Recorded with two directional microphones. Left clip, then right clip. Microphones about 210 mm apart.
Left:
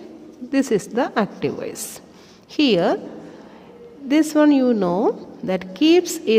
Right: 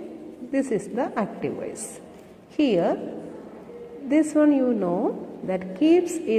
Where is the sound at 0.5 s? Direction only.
50° left (ahead or behind).